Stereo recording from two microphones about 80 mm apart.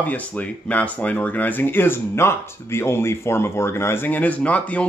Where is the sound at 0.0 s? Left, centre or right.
Centre.